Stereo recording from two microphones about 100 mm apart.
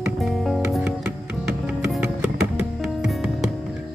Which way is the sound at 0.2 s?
Centre (ahead or behind).